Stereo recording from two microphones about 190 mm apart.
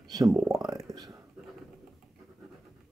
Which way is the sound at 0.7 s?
20° right (ahead or behind).